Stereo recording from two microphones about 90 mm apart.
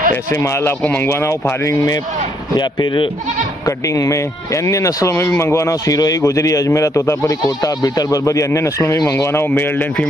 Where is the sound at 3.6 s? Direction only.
40° left (ahead or behind); by 10.0 s 20° left (ahead or behind).